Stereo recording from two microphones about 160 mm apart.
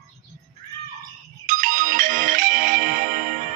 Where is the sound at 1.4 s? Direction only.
55° right (ahead or behind).